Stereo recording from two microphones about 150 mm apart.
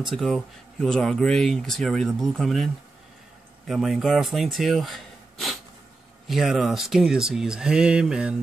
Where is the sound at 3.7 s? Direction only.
Centre (ahead or behind).